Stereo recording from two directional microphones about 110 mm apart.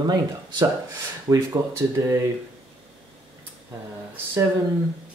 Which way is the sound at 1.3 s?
25° right (ahead or behind).